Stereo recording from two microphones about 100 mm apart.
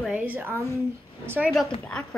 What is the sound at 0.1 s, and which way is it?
A child's voice, 20° right (ahead or behind).